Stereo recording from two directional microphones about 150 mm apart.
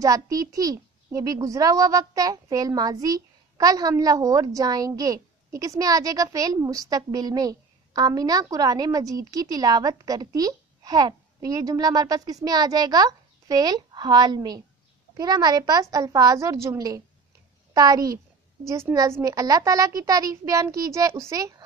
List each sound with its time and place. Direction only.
0.0 s a child's voice: 25° right (ahead or behind)